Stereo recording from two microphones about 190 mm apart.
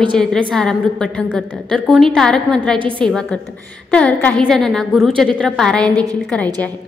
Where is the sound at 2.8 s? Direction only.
25° right (ahead or behind).